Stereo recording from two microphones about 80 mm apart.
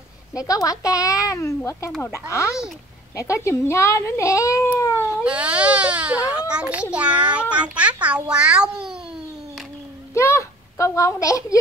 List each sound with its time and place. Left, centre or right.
0.4 s a child's voice: left
5.2 s a child's voice: centre
10.1 s a sound: left